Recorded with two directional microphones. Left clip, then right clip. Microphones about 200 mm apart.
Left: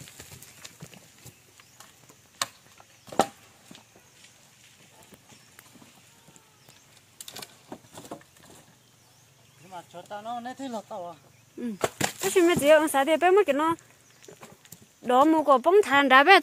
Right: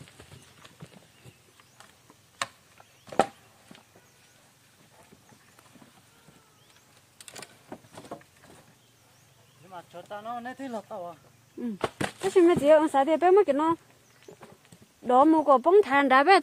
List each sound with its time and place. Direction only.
7.2 s power windows: 10° right (ahead or behind)
7.9 s a sound: centre (ahead or behind)
9.7 s speech: 5° right (ahead or behind)
11.8 s speech: 25° right (ahead or behind)
15.0 s speech: 15° right (ahead or behind)